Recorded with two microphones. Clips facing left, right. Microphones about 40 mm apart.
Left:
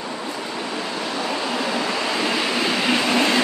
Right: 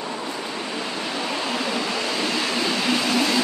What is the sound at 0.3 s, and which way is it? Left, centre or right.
Waves, centre.